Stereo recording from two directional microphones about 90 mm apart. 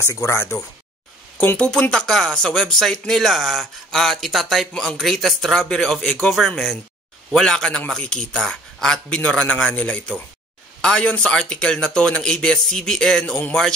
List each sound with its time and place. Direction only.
0.0 s speech: 35° left (ahead or behind)
1.6 s a man's voice: 10° left (ahead or behind)